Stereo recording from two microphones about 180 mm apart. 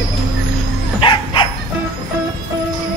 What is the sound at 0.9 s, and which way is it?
Bow-wow, 30° left (ahead or behind).